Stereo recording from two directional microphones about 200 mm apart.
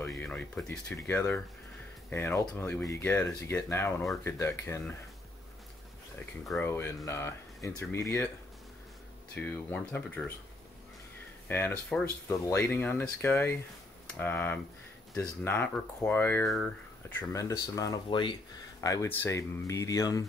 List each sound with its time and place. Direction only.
0.2 s speech: 10° left (ahead or behind)
6.4 s speech: centre (ahead or behind)
6.7 s speech: 15° left (ahead or behind)
9.3 s speech: 10° left (ahead or behind)
11.4 s speech: 10° left (ahead or behind)
17.2 s speech: 15° left (ahead or behind)